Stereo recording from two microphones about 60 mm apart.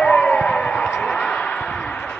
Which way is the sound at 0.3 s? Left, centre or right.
Centre.